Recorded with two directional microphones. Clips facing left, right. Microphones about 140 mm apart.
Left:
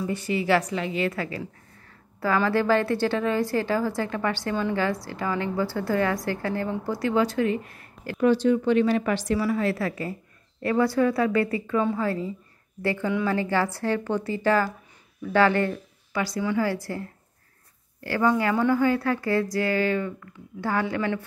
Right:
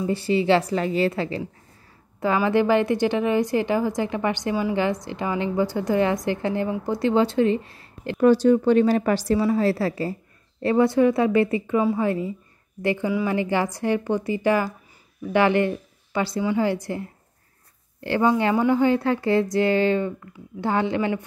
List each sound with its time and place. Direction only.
0.0 s a woman's voice: 30° right (ahead or behind)
0.7 s a woman's voice: 40° right (ahead or behind)
8.2 s a woman's voice: 40° right (ahead or behind); by 21.2 s 20° right (ahead or behind)